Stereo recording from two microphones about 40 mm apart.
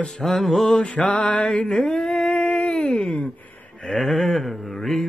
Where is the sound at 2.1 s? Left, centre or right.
Left.